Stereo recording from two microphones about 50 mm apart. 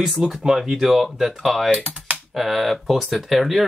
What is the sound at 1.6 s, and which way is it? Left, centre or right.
Speech, right.